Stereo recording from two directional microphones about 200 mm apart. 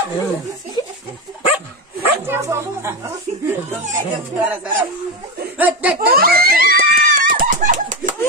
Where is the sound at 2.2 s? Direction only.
15° right (ahead or behind).